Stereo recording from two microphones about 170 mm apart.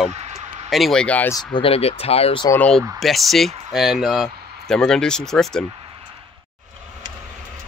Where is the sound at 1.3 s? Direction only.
25° left (ahead or behind).